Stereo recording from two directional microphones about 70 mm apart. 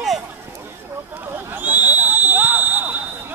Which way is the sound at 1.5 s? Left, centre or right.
Right.